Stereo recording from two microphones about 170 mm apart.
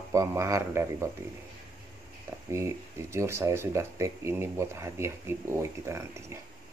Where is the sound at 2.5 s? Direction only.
15° right (ahead or behind).